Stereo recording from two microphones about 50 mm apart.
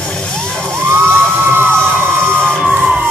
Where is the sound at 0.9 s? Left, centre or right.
Right.